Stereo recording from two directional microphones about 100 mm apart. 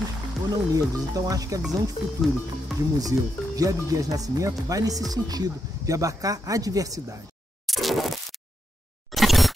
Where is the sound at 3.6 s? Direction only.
35° right (ahead or behind).